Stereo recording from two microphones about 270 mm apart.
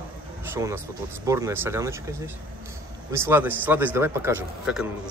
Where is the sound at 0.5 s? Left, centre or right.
Centre.